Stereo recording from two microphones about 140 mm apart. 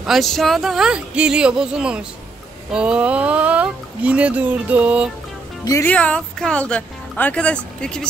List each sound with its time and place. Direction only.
0.0 s speech: centre (ahead or behind)
5.7 s speech: 20° left (ahead or behind)
5.9 s speech: 5° left (ahead or behind)